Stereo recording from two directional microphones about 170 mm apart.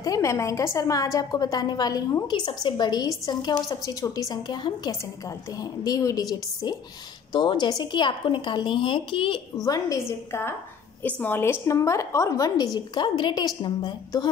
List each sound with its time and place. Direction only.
0.0 s a woman's voice: 20° left (ahead or behind)
7.3 s a woman's voice: 30° left (ahead or behind)
9.6 s a woman's voice: 20° left (ahead or behind)